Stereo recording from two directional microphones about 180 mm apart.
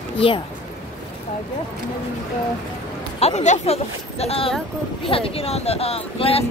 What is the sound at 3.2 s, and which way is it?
Speech, 40° left (ahead or behind).